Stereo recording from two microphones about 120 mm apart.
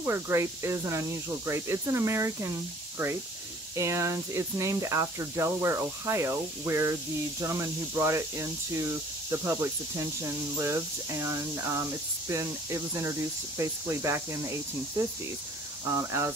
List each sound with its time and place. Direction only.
0.0 s speech: 25° right (ahead or behind)
3.7 s speech: 25° right (ahead or behind)
15.9 s speech: 25° right (ahead or behind)